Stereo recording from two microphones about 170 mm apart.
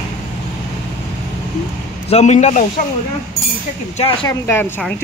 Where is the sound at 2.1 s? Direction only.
40° left (ahead or behind).